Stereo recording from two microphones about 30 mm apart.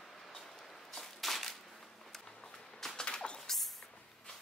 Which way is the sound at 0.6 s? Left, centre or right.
Centre.